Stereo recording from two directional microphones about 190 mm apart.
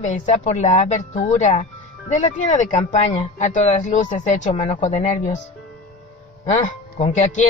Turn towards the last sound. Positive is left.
turn(degrees=40)  # may be behind; listen again after turning